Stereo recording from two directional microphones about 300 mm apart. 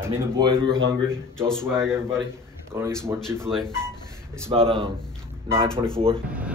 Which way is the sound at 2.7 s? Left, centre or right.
Centre.